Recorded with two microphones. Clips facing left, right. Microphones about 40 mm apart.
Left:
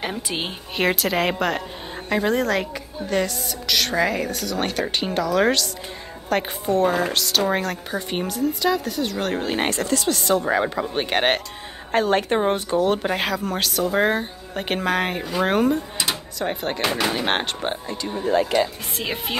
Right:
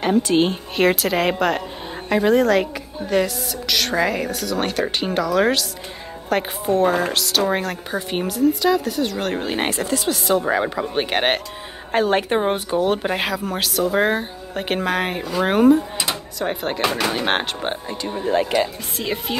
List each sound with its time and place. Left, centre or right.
0.0 s a woman's voice: centre
17.8 s speech: right